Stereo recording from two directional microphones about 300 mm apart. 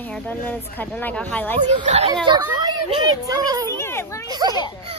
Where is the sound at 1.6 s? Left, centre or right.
Right.